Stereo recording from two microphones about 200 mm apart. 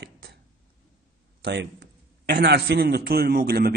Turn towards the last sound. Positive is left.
turn(degrees=-50)  # may be behind; listen again after turning